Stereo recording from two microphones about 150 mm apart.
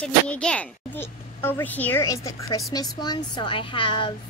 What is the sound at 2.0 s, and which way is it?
A child's voice, 20° left (ahead or behind).